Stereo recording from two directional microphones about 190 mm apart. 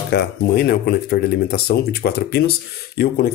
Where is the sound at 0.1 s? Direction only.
55° left (ahead or behind).